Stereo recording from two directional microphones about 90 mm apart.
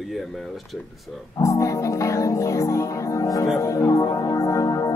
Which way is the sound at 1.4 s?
35° left (ahead or behind).